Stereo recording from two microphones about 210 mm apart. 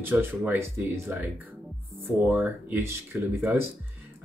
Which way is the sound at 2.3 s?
10° right (ahead or behind).